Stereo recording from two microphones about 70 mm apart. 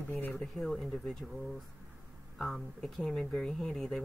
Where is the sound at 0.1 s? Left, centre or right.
Left.